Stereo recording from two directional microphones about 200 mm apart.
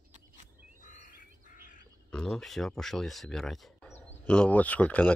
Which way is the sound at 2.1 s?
5° left (ahead or behind).